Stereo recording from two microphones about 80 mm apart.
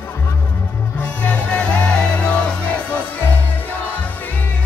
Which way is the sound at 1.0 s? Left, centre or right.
Centre.